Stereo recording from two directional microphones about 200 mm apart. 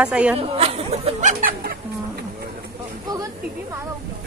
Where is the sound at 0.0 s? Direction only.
5° right (ahead or behind).